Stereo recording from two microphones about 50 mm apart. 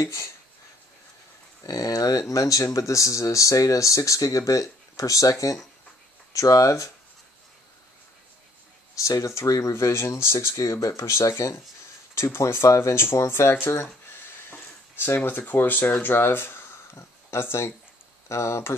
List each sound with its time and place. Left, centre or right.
0.0 s speech: left
2.0 s speech: left
6.3 s speech: left
8.9 s speech: left
12.2 s speech: left
14.5 s speech: left
18.3 s speech: left